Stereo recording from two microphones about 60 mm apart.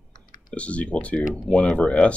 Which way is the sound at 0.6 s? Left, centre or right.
Left.